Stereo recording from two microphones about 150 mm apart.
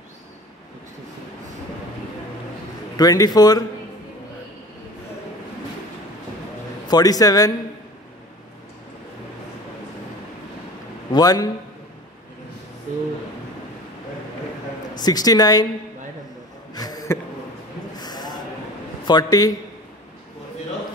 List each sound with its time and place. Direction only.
3.0 s a man's voice: 25° left (ahead or behind)
6.9 s a man's voice: 25° left (ahead or behind)
11.1 s a man's voice: 25° left (ahead or behind)
15.0 s a man's voice: 25° left (ahead or behind)
16.7 s a sound: 25° left (ahead or behind)
19.0 s a man's voice: 25° left (ahead or behind)